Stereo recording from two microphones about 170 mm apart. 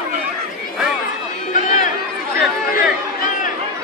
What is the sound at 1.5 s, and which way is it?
Run, 50° left (ahead or behind).